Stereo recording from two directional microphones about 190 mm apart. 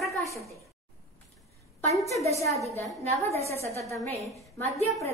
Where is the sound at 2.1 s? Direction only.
35° right (ahead or behind).